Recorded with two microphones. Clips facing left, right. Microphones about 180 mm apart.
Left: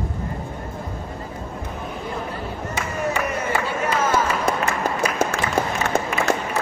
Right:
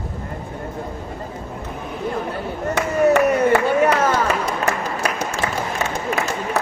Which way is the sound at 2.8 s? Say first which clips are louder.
Right 10 dB; 60° right (ahead or behind).